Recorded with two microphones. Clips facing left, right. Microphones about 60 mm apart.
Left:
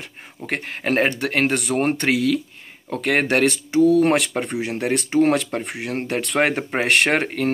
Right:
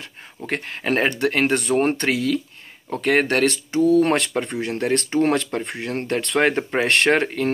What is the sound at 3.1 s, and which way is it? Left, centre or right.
Speech, centre.